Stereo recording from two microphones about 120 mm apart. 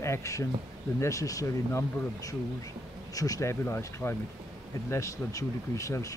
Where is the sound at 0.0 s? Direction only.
25° left (ahead or behind).